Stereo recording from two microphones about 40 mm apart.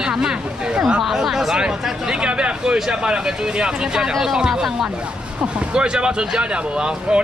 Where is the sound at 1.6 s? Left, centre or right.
Right.